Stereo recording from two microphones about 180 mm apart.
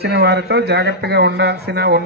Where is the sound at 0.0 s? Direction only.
70° right (ahead or behind).